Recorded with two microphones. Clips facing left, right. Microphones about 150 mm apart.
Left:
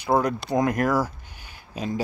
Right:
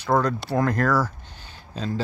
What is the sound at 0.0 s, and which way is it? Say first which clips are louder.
Speech: even; 10° left (ahead or behind).